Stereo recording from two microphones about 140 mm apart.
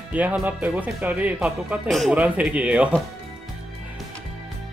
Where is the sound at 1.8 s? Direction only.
Centre (ahead or behind).